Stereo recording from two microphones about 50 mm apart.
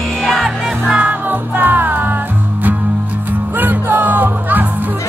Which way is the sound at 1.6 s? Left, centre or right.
Right.